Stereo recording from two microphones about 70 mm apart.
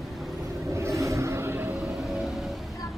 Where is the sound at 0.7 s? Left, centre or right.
Right.